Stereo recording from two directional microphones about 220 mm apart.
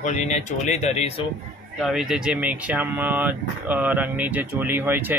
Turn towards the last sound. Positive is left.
turn(degrees=-10)  # may be behind; listen again after turning